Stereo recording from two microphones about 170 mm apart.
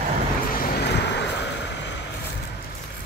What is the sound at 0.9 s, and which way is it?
Vehicle, 90° left.